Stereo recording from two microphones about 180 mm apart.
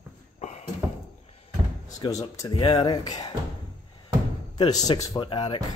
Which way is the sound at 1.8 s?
20° left (ahead or behind).